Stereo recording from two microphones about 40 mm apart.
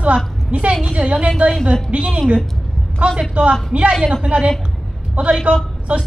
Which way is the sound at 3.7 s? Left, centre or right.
Right.